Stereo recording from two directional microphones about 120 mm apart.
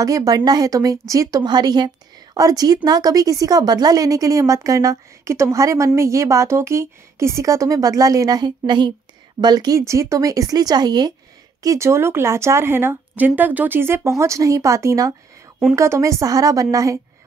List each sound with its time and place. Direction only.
0.0 s a woman's voice: 30° right (ahead or behind)